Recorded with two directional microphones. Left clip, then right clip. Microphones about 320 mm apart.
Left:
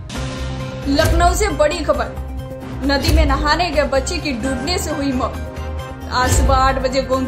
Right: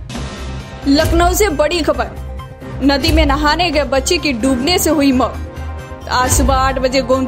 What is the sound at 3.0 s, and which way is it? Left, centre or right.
A woman's voice, right.